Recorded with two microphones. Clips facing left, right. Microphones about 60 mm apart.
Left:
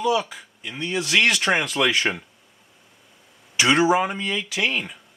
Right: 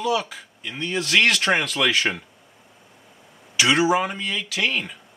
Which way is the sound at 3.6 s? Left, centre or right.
Left.